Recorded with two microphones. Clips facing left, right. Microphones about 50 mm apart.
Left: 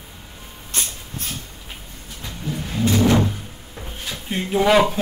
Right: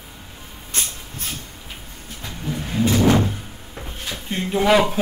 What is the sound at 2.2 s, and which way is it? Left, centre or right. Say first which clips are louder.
Vehicle: right 1 dB; centre.